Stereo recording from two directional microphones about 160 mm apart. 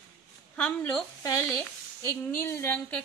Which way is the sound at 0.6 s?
5° left (ahead or behind).